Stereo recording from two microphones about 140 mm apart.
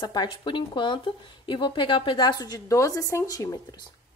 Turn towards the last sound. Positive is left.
turn(degrees=30)  # may be behind; listen again after turning